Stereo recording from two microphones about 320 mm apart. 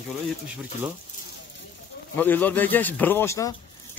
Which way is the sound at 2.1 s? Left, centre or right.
Centre.